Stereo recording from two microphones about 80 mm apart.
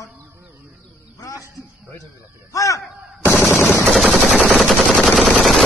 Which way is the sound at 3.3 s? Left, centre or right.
Left.